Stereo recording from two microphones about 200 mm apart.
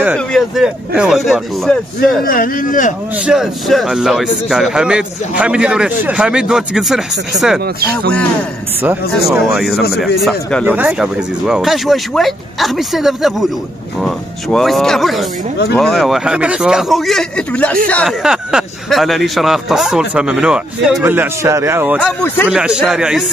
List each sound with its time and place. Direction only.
0.0 s a man's voice: 5° right (ahead or behind)
2.2 s speech: 45° left (ahead or behind)
3.3 s a man's voice: centre (ahead or behind)
7.6 s speech: 50° right (ahead or behind)
8.8 s a man's voice: 5° right (ahead or behind)
22.0 s speech: 10° left (ahead or behind)
22.5 s a man's voice: 5° right (ahead or behind)